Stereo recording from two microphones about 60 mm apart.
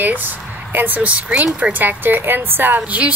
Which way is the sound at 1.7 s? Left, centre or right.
Right.